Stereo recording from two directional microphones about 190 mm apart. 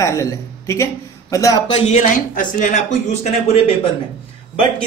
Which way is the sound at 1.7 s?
35° left (ahead or behind).